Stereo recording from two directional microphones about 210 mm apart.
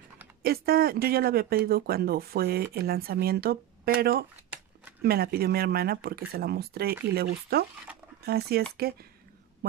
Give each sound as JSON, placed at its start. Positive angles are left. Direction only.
{"t": 0.4, "sound": "speech", "side_deg": -45}